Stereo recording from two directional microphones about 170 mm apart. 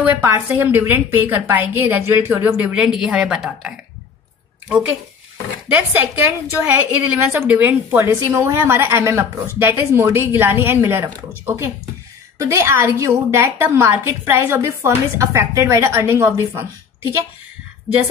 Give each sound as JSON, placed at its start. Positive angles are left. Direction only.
{"t": 0.0, "sound": "a woman's voice", "side_deg": -10}
{"t": 5.7, "sound": "a woman's voice", "side_deg": -10}